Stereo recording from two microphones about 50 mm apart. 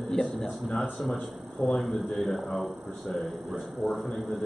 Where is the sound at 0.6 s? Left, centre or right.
Left.